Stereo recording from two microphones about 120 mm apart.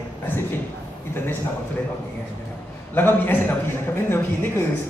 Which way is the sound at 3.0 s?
15° left (ahead or behind).